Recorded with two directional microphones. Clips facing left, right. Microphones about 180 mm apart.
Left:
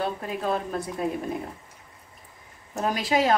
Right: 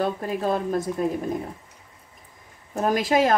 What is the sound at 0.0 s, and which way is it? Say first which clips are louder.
Speech: right 4 dB; 40° right (ahead or behind).